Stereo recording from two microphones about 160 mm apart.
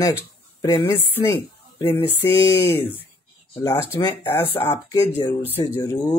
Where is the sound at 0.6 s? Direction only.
30° left (ahead or behind).